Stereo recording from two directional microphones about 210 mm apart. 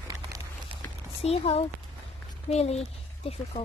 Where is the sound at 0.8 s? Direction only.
10° left (ahead or behind).